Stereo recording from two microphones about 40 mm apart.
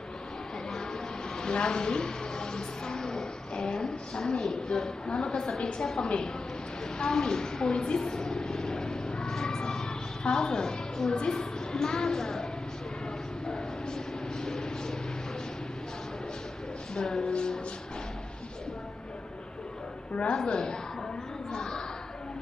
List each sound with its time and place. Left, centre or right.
1.4 s a woman's voice: left
8.0 s vehicle: centre
13.5 s a sound: centre
16.9 s speech: centre
17.3 s music: left
20.3 s a woman's voice: centre
21.5 s a sound: centre